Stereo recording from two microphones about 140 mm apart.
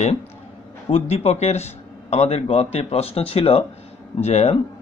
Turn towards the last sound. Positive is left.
turn(degrees=50)  # may be behind; listen again after turning